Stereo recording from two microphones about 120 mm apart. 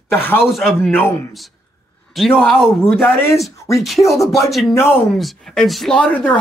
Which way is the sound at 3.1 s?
20° left (ahead or behind).